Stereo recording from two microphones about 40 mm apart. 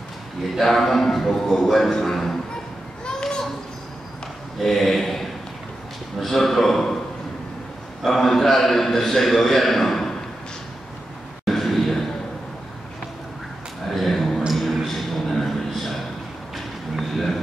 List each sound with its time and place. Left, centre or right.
0.6 s a man's voice: centre
3.1 s children playing: centre
4.6 s speech: centre
8.0 s a man's voice: centre
11.4 s a sound: centre
13.8 s a sound: centre